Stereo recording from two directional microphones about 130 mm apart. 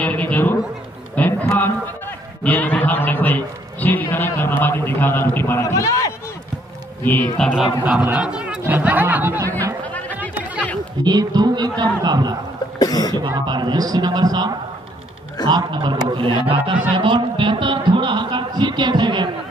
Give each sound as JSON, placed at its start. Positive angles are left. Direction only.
{"t": 0.0, "sound": "speech", "side_deg": 10}
{"t": 1.2, "sound": "a sound", "side_deg": 10}
{"t": 2.4, "sound": "a man's voice", "side_deg": 15}
{"t": 7.0, "sound": "speech", "side_deg": 15}
{"t": 7.8, "sound": "speech", "side_deg": -10}
{"t": 9.8, "sound": "music", "side_deg": 10}
{"t": 11.1, "sound": "a man's voice", "side_deg": -30}
{"t": 12.7, "sound": "cough", "side_deg": 30}
{"t": 13.3, "sound": "a man's voice", "side_deg": -35}
{"t": 15.5, "sound": "a man's voice", "side_deg": -35}
{"t": 16.9, "sound": "a sound", "side_deg": -40}